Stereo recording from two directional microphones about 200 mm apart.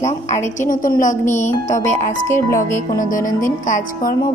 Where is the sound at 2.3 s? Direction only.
15° left (ahead or behind).